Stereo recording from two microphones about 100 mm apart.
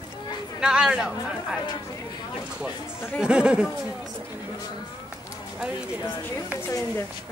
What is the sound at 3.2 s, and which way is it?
Speech, 10° right (ahead or behind).